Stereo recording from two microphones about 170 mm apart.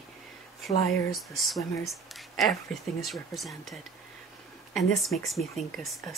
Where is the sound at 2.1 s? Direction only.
Centre (ahead or behind).